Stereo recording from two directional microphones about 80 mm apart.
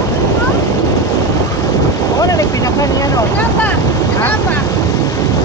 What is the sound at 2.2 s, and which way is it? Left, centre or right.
Vehicle, left.